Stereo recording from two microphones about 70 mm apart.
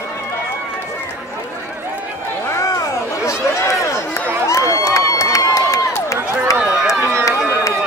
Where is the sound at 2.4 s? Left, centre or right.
Left.